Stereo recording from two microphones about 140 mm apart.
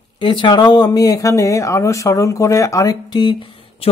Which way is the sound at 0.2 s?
35° left (ahead or behind).